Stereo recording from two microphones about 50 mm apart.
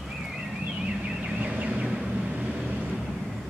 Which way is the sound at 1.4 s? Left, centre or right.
Right.